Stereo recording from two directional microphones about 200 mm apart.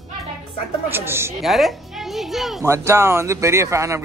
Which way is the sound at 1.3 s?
Centre (ahead or behind).